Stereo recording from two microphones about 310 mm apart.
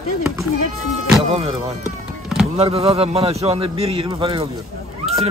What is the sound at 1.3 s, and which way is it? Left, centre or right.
Speech, centre.